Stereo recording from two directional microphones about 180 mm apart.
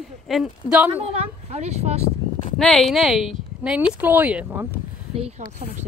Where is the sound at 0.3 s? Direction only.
5° right (ahead or behind).